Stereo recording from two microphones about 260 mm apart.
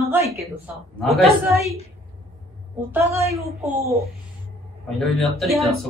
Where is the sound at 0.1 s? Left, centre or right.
Centre.